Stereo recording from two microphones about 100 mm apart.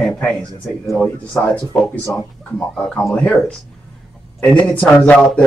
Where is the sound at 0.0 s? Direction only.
10° left (ahead or behind).